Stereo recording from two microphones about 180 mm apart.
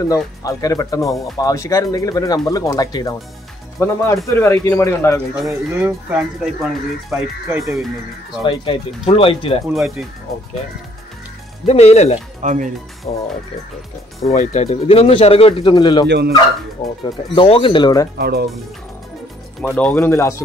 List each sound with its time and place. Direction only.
0.1 s speech: 20° left (ahead or behind)
5.3 s speech: centre (ahead or behind)
7.4 s speech: 15° right (ahead or behind)
8.5 s speech: 30° left (ahead or behind)
9.8 s speech: centre (ahead or behind)
11.6 s speech: 35° left (ahead or behind)
12.4 s speech: 45° right (ahead or behind)
13.1 s speech: 30° left (ahead or behind)
16.1 s speech: 65° right (ahead or behind)
16.8 s speech: 25° left (ahead or behind)
18.1 s speech: 60° right (ahead or behind)
19.6 s speech: 5° left (ahead or behind)
20.0 s speech: 15° left (ahead or behind)